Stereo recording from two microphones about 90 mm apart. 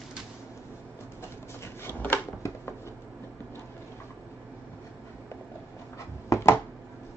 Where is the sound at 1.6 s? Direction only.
20° left (ahead or behind).